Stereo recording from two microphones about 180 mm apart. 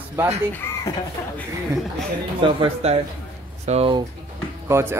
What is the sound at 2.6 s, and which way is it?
Speech, 35° right (ahead or behind).